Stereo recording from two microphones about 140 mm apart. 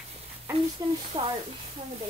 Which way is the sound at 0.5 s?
45° right (ahead or behind).